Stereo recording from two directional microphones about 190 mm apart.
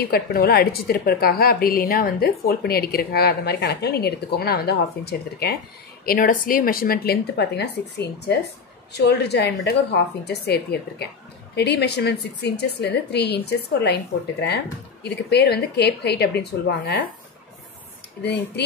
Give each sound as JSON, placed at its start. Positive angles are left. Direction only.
{"t": 0.1, "sound": "a woman's voice", "side_deg": 55}
{"t": 6.0, "sound": "a woman's voice", "side_deg": 45}
{"t": 15.0, "sound": "a woman's voice", "side_deg": 60}